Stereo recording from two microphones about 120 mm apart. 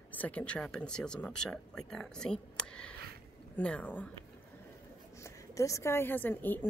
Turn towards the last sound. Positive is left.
turn(degrees=15)  # may be behind; listen again after turning